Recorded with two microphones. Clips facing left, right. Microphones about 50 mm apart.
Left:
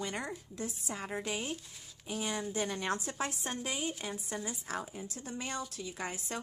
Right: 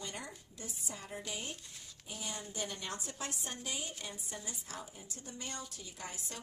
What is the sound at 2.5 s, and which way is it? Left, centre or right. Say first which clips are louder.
A woman's voice: left 7 dB; left.